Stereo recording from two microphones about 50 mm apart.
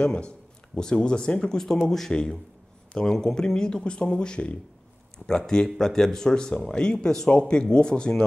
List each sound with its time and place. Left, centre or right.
0.0 s speech: left
5.8 s speech: centre